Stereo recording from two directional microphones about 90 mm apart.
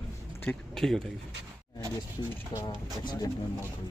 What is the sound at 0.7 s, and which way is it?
Speech, 5° left (ahead or behind).